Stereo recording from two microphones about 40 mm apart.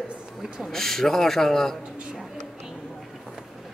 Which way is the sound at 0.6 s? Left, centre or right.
Centre.